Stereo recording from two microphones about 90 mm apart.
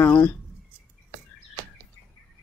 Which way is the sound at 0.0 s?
20° left (ahead or behind).